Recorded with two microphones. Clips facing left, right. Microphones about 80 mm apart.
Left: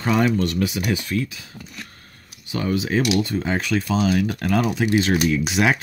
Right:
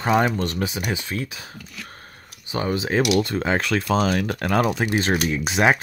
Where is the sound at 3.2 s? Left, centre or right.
Right.